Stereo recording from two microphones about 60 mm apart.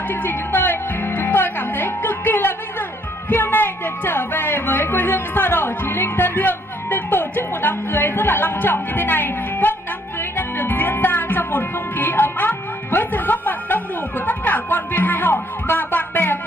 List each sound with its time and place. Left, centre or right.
0.1 s music: left